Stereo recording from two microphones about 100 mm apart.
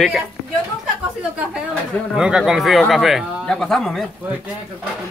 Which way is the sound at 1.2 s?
10° right (ahead or behind).